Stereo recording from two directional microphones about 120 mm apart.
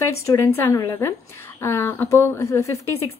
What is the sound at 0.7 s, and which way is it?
A woman's voice, 20° left (ahead or behind).